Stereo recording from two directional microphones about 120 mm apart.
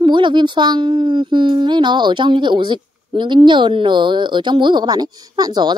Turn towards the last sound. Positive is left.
turn(degrees=-35)  # may be behind; listen again after turning